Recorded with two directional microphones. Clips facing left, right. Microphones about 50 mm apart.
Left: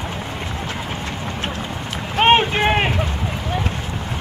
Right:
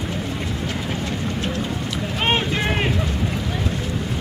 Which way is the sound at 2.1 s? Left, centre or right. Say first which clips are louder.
Left 8 dB; left.